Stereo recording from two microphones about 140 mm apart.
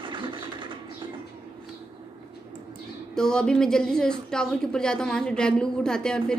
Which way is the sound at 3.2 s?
5° left (ahead or behind).